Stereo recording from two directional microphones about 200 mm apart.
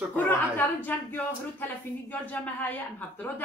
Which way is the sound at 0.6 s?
10° left (ahead or behind).